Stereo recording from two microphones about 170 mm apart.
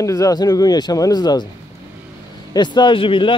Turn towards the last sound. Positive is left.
turn(degrees=30)  # may be behind; listen again after turning